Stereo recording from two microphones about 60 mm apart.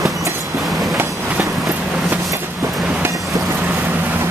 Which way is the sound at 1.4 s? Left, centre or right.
Right.